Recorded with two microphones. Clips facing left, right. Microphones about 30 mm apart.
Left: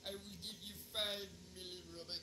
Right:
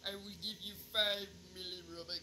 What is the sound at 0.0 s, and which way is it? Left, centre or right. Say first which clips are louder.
Speech: right 4 dB; right.